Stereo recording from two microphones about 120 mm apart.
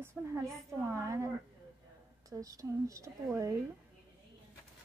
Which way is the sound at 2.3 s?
30° right (ahead or behind).